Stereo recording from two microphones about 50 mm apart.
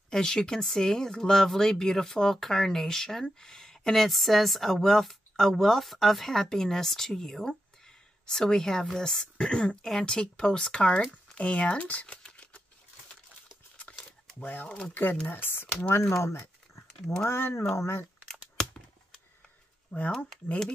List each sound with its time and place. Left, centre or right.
0.1 s speech: centre
9.5 s speech: left
14.4 s speech: left
16.2 s a sound: left
17.3 s speech: left
18.3 s a sound: centre
19.9 s speech: left